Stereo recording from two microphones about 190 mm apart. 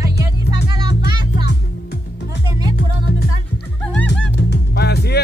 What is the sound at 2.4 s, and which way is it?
Music, 20° right (ahead or behind).